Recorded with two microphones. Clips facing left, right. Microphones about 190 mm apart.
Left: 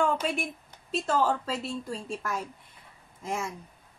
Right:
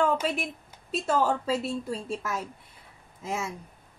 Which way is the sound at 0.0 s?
5° right (ahead or behind).